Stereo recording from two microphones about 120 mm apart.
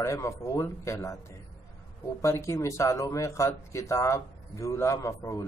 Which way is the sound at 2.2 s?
25° left (ahead or behind).